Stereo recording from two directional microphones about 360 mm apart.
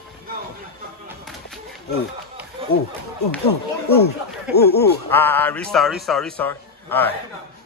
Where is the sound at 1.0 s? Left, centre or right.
Centre.